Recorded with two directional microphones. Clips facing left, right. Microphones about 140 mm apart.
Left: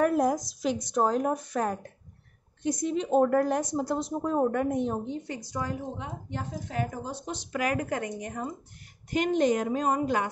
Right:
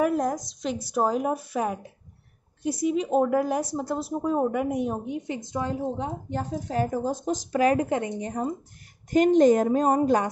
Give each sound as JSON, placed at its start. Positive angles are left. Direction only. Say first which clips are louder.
{"t": 0.0, "sound": "a woman's voice", "louder": "even", "side_deg": 0}
{"t": 9.1, "sound": "a woman's voice", "louder": "right 7 dB", "side_deg": -40}